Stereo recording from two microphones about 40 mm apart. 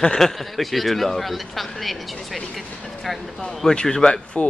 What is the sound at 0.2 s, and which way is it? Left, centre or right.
Speech, centre.